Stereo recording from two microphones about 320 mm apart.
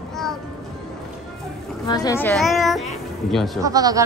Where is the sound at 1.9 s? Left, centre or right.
Centre.